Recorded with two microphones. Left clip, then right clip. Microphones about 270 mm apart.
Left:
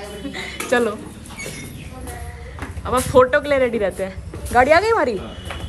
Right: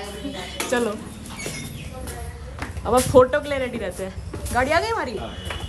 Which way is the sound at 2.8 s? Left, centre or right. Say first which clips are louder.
Left 1 dB; centre.